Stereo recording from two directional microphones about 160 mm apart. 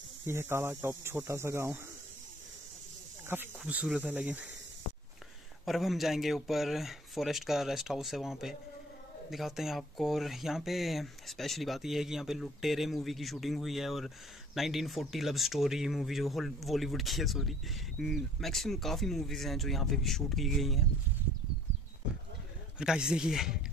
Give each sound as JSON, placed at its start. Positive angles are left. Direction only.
{"t": 0.2, "sound": "speech", "side_deg": -15}
{"t": 3.3, "sound": "speech", "side_deg": -10}
{"t": 5.7, "sound": "speech", "side_deg": 0}
{"t": 22.0, "sound": "a sound", "side_deg": -5}
{"t": 22.8, "sound": "speech", "side_deg": -5}